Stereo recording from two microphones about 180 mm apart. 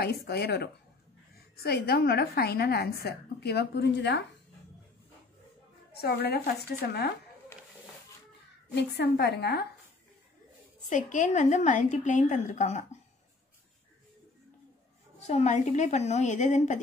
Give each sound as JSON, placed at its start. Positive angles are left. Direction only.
{"t": 0.0, "sound": "a woman's voice", "side_deg": 60}
{"t": 5.9, "sound": "a woman's voice", "side_deg": 60}
{"t": 8.7, "sound": "a woman's voice", "side_deg": 65}
{"t": 10.9, "sound": "a woman's voice", "side_deg": 45}
{"t": 15.1, "sound": "a woman's voice", "side_deg": 40}